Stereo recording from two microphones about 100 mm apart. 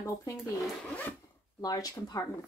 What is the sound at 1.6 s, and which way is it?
Speech, 35° left (ahead or behind).